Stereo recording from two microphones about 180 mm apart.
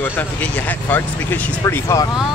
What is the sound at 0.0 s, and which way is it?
Speech, 10° left (ahead or behind).